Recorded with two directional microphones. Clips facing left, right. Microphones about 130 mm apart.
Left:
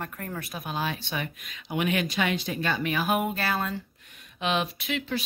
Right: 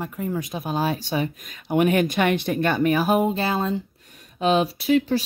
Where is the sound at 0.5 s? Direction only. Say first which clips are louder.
Right 5 dB; 35° right (ahead or behind).